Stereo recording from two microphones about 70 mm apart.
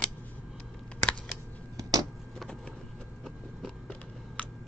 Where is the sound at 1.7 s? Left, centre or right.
Right.